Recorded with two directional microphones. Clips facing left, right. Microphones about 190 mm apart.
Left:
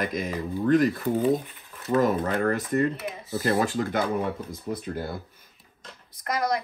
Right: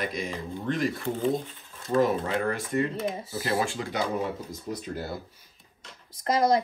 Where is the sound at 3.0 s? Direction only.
25° right (ahead or behind).